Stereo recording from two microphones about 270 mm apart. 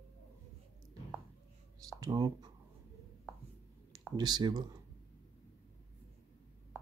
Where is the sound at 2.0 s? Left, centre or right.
Centre.